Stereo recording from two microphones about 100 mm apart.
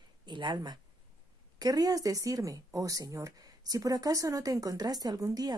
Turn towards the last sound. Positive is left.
turn(degrees=-40)  # may be behind; listen again after turning